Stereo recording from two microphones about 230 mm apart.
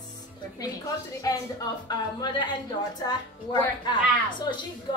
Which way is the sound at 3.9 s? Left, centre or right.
Centre.